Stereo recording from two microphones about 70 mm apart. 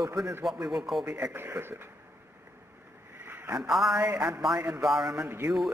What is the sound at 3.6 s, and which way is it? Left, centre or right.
Speech, centre.